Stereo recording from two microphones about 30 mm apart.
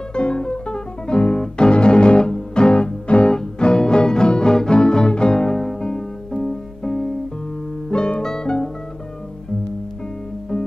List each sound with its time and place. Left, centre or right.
0.1 s music: left
3.3 s music: left
8.2 s music: left